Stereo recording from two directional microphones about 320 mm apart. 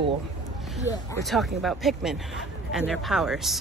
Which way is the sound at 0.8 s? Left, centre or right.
Centre.